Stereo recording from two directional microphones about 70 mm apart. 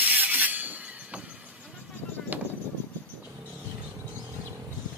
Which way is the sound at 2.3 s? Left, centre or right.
Right.